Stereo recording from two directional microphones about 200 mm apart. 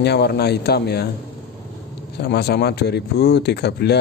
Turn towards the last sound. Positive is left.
turn(degrees=55)  # may be behind; listen again after turning